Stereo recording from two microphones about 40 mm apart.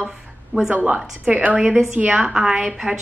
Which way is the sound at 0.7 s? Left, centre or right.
Right.